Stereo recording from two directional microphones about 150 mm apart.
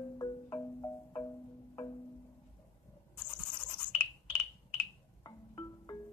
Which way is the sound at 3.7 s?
30° left (ahead or behind).